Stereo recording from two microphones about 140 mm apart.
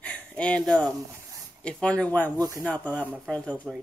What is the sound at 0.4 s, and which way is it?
Speech, 10° left (ahead or behind).